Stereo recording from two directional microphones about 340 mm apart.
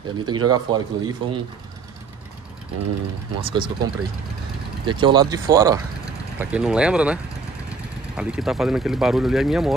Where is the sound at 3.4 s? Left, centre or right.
Centre.